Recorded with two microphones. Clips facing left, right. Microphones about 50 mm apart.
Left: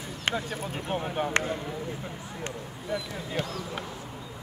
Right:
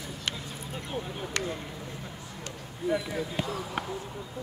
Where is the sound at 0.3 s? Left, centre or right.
Left.